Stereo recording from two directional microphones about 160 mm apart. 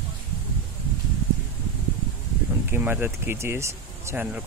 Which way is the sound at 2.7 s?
10° right (ahead or behind).